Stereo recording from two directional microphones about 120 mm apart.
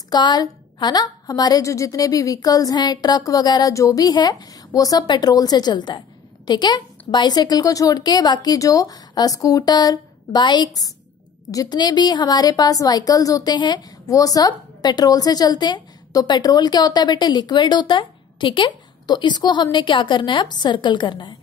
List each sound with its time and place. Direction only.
0.1 s a woman's voice: 35° left (ahead or behind)